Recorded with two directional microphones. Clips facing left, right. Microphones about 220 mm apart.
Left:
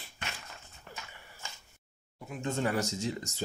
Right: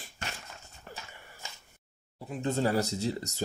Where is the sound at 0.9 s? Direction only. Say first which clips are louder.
Right 2 dB; 40° right (ahead or behind).